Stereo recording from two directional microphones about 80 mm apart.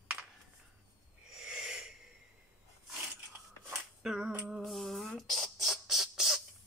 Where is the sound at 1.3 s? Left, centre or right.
Centre.